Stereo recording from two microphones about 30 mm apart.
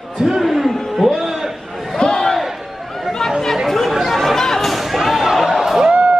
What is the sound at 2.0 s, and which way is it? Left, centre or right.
Crowd, left.